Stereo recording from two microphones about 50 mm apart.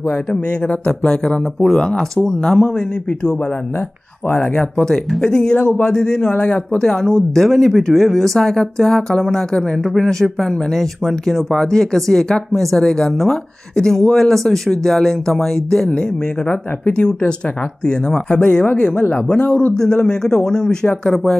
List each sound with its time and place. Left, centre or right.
0.1 s speech: centre
4.6 s speech: centre
6.3 s speech: left
7.0 s speech: centre
15.9 s speech: left; by 21.4 s centre